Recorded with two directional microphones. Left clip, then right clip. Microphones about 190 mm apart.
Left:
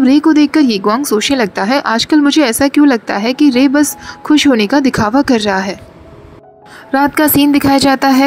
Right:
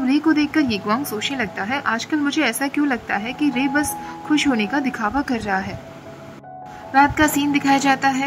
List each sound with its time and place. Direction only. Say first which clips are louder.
0.0 s speech: left 9 dB; 20° left (ahead or behind)
6.9 s speech: left 4 dB; 25° left (ahead or behind)